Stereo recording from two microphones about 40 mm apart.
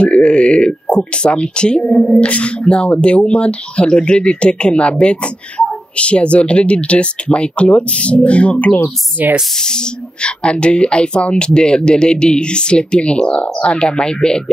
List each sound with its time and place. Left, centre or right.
0.0 s speech: left
9.2 s speech: right
9.6 s speech: centre